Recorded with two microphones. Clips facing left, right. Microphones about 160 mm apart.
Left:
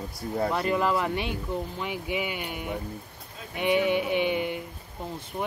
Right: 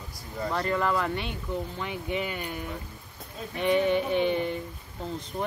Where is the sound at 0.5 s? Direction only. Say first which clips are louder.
Right 1 dB; 15° left (ahead or behind).